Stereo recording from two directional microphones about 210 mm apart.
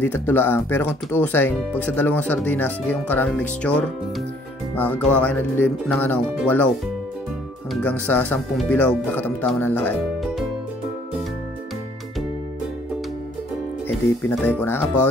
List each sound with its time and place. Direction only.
0.0 s speech: 10° left (ahead or behind)
8.1 s speech: 5° left (ahead or behind)
14.2 s speech: 10° left (ahead or behind)